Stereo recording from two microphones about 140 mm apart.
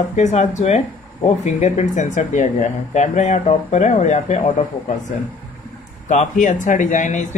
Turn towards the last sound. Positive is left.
turn(degrees=60)  # may be behind; listen again after turning